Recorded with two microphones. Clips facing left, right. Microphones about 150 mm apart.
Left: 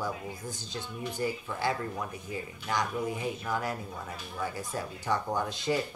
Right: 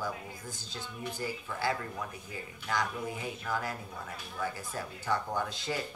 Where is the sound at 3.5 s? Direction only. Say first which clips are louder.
Right 1 dB; 25° left (ahead or behind).